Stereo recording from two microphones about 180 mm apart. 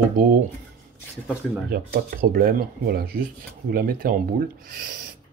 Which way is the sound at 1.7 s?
55° right (ahead or behind).